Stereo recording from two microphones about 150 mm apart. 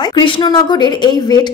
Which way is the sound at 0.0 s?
30° left (ahead or behind).